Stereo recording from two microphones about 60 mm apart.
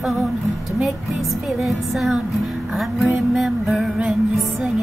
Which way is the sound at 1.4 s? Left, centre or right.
Centre.